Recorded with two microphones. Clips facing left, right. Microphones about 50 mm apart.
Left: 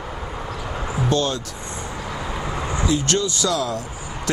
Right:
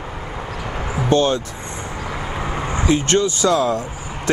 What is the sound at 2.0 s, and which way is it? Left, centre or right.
Vehicle, right.